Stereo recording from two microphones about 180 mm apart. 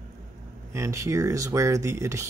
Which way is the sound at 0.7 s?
15° right (ahead or behind).